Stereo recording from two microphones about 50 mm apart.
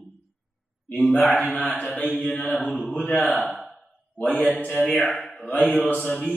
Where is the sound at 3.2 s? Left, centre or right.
Left.